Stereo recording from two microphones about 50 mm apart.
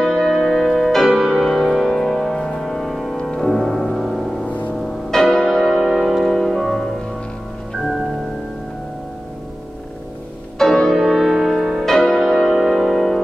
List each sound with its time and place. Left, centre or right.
0.0 s music: centre
4.5 s music: left
5.1 s music: centre
5.9 s music: centre
10.6 s music: centre